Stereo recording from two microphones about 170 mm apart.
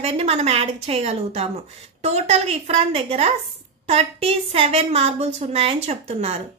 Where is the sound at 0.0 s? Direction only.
40° right (ahead or behind).